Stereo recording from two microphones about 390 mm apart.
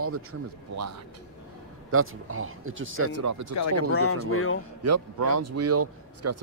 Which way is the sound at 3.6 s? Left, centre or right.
Left.